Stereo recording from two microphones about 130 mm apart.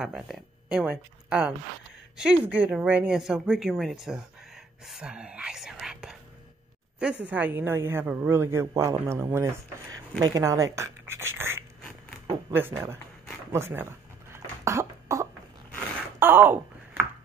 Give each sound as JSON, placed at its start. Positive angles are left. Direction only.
{"t": 0.0, "sound": "a man's voice", "side_deg": -5}
{"t": 13.5, "sound": "cough", "side_deg": -20}
{"t": 16.2, "sound": "a sound", "side_deg": -15}